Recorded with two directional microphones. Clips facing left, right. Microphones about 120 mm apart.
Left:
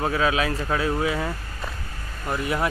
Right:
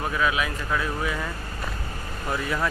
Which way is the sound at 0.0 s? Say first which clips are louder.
Left 3 dB; 30° left (ahead or behind).